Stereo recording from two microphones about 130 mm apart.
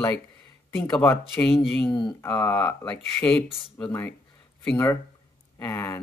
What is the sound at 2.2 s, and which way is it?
Speech, 15° left (ahead or behind).